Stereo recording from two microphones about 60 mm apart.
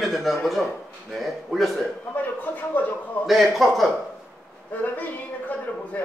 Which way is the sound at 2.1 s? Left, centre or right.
Left.